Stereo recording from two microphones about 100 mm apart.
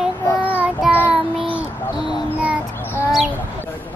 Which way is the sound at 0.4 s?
10° right (ahead or behind).